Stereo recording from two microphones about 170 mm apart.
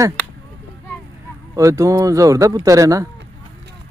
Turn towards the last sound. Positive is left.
turn(degrees=-20)  # may be behind; listen again after turning